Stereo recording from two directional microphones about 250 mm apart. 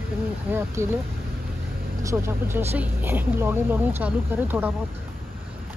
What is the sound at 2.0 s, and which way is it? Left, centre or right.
Speech, centre.